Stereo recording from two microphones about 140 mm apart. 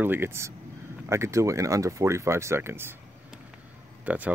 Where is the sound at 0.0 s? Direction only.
15° right (ahead or behind).